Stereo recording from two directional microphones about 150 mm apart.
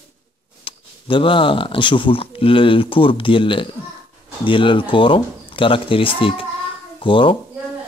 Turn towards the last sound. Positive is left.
turn(degrees=35)  # may be behind; listen again after turning